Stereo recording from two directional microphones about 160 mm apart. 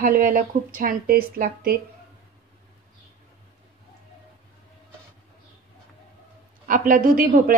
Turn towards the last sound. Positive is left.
turn(degrees=-60)  # may be behind; listen again after turning